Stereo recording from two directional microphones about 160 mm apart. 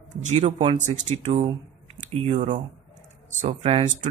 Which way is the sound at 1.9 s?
40° right (ahead or behind).